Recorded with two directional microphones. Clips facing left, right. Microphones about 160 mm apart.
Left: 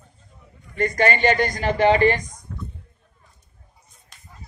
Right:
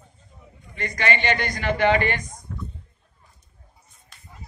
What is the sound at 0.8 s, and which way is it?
A man's voice, 45° left (ahead or behind).